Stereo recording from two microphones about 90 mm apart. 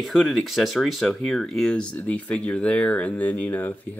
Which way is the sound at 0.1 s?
Centre (ahead or behind).